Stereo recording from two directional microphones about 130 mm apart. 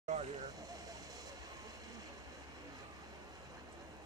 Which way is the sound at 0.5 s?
30° right (ahead or behind).